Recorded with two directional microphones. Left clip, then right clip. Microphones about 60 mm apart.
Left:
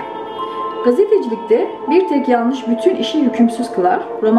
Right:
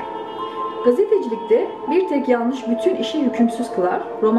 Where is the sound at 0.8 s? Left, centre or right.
Left.